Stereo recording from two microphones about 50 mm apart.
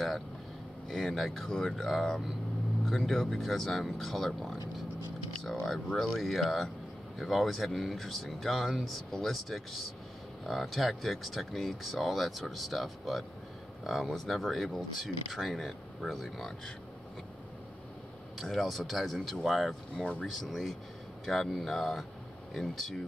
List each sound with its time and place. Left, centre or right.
0.8 s speech: centre
18.4 s speech: centre